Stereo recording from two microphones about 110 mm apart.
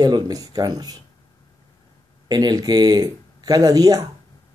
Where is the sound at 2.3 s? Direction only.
35° right (ahead or behind).